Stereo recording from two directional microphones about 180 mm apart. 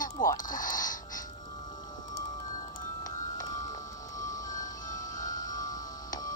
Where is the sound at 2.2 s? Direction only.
20° left (ahead or behind).